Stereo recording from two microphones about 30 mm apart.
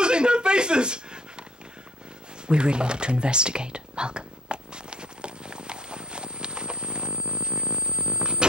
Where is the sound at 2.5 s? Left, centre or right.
Right.